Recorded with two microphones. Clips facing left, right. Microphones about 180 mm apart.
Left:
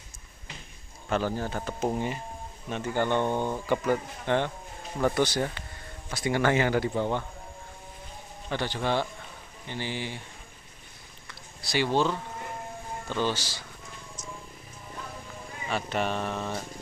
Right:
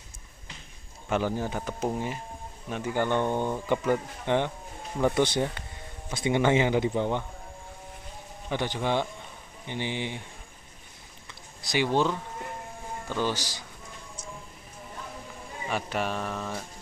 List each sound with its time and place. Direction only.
1.0 s speech: 15° right (ahead or behind)
3.1 s speech: 15° left (ahead or behind)
3.9 s speech: 15° right (ahead or behind)
8.5 s speech: 15° right (ahead or behind)
11.6 s speech: 15° right (ahead or behind)
15.7 s speech: 5° right (ahead or behind)